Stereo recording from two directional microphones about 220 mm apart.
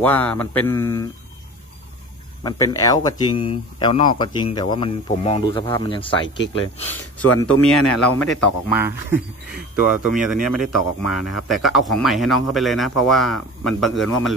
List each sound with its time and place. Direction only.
0.0 s speech: 10° left (ahead or behind)
2.4 s speech: 15° left (ahead or behind)
7.6 s speech: 5° left (ahead or behind)
8.7 s speech: 10° right (ahead or behind)